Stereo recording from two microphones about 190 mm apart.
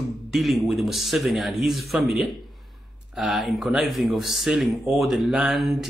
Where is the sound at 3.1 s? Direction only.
Centre (ahead or behind).